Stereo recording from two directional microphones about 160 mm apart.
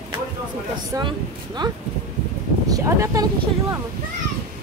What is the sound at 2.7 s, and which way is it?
Speech, 20° right (ahead or behind).